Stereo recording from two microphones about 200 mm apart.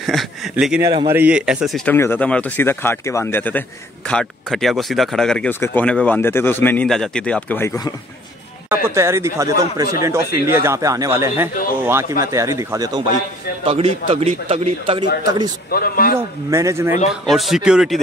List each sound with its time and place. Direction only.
0.0 s speech: centre (ahead or behind)
0.8 s a man's voice: 15° right (ahead or behind)
1.9 s speech: 10° left (ahead or behind)
8.6 s a man's voice: 10° right (ahead or behind)
13.7 s a man's voice: 30° right (ahead or behind)
15.7 s speech: 50° left (ahead or behind)
16.2 s a man's voice: 15° right (ahead or behind)
17.1 s speech: centre (ahead or behind)